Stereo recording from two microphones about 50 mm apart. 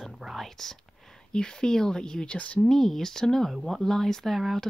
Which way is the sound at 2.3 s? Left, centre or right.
Left.